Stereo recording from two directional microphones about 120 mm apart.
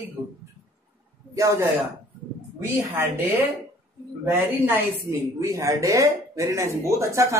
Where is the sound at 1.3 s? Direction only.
25° right (ahead or behind).